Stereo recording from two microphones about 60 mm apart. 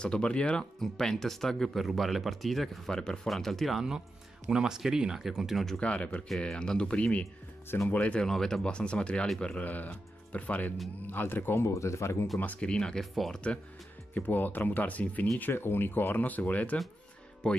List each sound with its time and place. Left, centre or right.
0.0 s speech: centre
2.9 s speech: centre
4.5 s speech: centre
5.8 s speech: centre
8.3 s speech: centre; by 11.6 s left
11.6 s speech: left
12.4 s speech: left
13.1 s speech: centre
14.1 s speech: left